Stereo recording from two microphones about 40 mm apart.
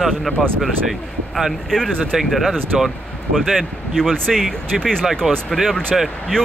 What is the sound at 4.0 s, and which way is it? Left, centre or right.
Speech, centre.